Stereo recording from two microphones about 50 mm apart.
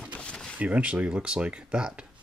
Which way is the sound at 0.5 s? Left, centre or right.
Right.